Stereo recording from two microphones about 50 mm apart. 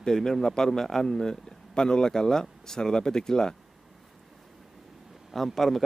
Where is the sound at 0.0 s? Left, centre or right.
Centre.